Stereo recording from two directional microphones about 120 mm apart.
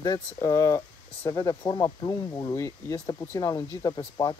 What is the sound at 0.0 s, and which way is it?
Speech, 25° left (ahead or behind).